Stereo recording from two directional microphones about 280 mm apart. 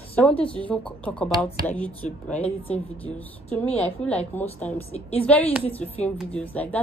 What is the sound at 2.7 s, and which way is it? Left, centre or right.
A woman's voice, centre.